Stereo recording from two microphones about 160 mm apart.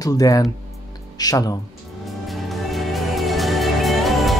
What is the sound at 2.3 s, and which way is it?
Music, centre (ahead or behind).